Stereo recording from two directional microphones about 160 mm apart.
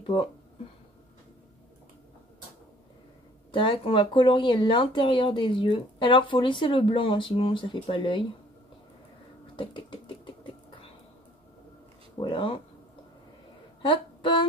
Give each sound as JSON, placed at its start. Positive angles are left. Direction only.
{"t": 0.0, "sound": "speech", "side_deg": 30}
{"t": 3.5, "sound": "speech", "side_deg": 35}
{"t": 9.6, "sound": "a sound", "side_deg": 30}
{"t": 12.2, "sound": "speech", "side_deg": 30}
{"t": 13.8, "sound": "speech", "side_deg": 30}